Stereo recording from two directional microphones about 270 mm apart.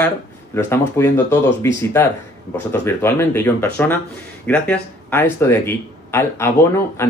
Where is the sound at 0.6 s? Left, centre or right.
Centre.